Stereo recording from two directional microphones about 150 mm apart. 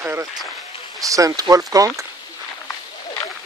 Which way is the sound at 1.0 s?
20° right (ahead or behind).